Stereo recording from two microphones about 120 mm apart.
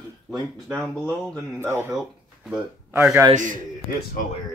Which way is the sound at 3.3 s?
90° right.